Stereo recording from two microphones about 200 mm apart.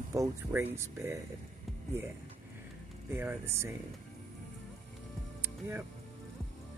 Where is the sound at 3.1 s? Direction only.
10° right (ahead or behind).